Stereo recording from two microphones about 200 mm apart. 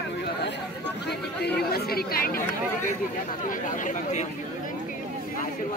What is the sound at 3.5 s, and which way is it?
Speech, 40° left (ahead or behind).